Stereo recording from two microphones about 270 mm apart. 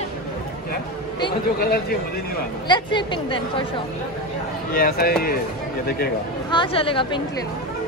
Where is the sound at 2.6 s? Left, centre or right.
Centre.